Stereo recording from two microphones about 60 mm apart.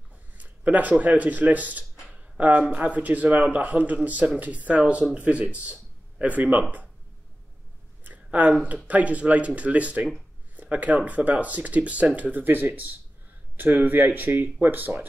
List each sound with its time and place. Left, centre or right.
0.4 s speech: right
8.0 s a sound: right
8.8 s speech: right